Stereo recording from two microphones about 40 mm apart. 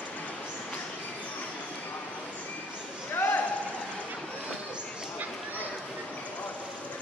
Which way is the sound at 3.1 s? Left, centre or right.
Left.